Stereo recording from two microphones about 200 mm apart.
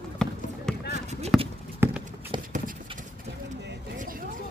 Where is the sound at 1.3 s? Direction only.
Centre (ahead or behind).